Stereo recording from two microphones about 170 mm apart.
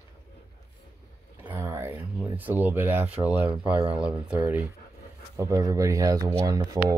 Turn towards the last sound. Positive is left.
turn(degrees=-20)  # may be behind; listen again after turning